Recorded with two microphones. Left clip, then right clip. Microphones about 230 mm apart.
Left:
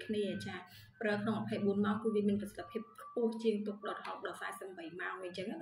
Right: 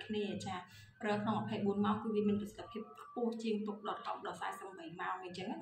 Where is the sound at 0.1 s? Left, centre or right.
Centre.